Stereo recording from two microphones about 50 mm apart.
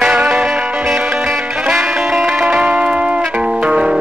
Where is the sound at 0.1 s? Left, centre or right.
Right.